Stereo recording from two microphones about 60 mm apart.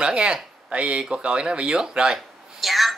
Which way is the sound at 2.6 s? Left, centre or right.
Centre.